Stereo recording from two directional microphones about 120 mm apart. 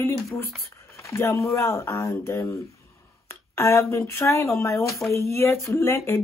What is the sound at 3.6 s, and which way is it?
Speech, 25° left (ahead or behind).